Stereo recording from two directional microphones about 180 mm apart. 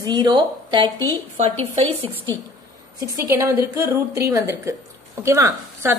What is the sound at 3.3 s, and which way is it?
A woman's voice, 15° right (ahead or behind).